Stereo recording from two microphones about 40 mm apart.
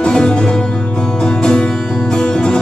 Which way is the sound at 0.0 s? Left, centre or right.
Left.